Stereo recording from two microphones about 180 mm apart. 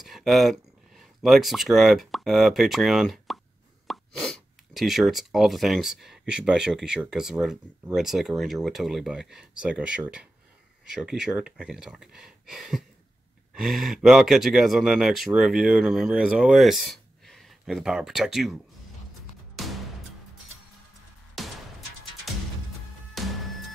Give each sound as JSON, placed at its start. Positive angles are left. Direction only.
{"t": 0.0, "sound": "speech", "side_deg": 0}
{"t": 21.4, "sound": "music", "side_deg": 0}